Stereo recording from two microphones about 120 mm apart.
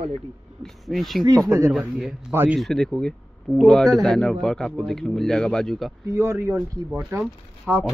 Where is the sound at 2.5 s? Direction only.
5° left (ahead or behind).